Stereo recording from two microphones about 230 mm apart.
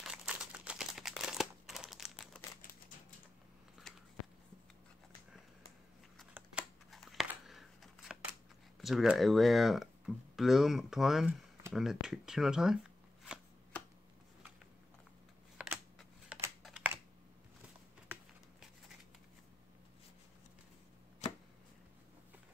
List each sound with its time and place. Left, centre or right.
0.0 s crumpling: centre
6.1 s a sound: centre
8.8 s speech: centre
13.2 s chopping: centre
15.5 s computer keyboard: centre